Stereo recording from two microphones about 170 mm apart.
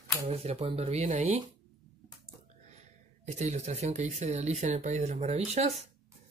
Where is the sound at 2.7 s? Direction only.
40° right (ahead or behind).